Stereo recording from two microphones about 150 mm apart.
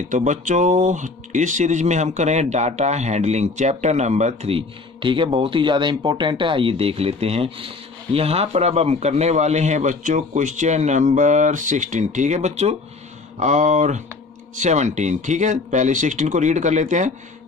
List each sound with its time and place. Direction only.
0.1 s speech: 55° right (ahead or behind)